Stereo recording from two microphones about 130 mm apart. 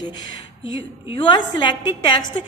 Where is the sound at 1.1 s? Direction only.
40° left (ahead or behind).